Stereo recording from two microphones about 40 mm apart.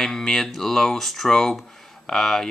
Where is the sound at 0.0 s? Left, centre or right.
Centre.